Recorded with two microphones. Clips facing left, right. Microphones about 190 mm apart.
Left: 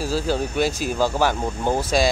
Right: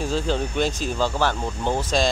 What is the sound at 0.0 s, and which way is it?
Speech, 5° left (ahead or behind).